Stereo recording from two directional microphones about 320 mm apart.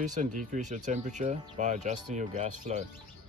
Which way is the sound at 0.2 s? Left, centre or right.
Right.